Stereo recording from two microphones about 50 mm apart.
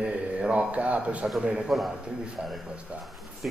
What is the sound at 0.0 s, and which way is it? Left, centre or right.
A man's voice, right.